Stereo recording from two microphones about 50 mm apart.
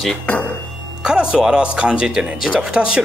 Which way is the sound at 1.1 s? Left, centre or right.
Centre.